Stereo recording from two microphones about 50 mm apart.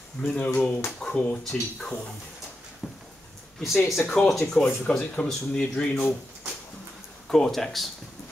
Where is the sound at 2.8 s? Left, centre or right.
Centre.